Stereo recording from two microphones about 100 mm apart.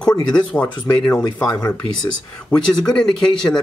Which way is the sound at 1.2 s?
40° left (ahead or behind).